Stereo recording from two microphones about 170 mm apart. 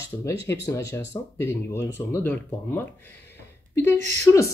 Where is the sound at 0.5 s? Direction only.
20° left (ahead or behind).